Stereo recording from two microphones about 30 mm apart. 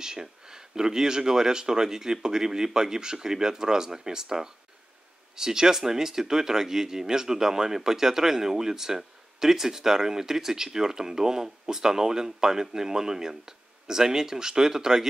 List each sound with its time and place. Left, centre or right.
0.0 s speech: right